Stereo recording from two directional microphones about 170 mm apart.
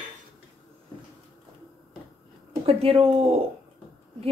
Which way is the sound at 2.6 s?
35° right (ahead or behind).